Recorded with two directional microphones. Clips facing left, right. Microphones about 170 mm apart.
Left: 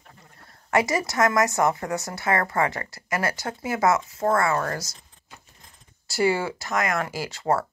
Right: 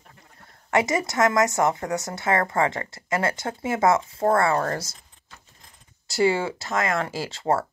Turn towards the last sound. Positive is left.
turn(degrees=-25)  # may be behind; listen again after turning